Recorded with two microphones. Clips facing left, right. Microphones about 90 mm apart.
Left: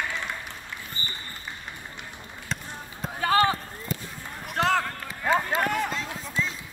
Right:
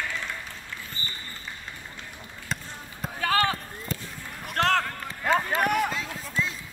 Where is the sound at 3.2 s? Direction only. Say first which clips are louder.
Left 3 dB; 25° left (ahead or behind).